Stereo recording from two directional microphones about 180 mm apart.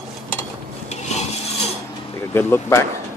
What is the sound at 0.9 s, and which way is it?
Filing, 40° left (ahead or behind).